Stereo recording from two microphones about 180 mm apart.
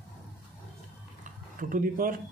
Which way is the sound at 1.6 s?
50° right (ahead or behind).